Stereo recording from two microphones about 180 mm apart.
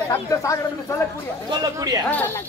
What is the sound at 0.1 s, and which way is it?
Speech, 15° left (ahead or behind).